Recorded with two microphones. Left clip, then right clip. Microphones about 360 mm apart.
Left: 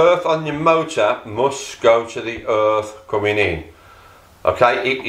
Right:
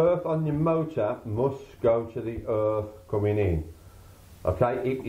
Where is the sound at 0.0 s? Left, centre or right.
Centre.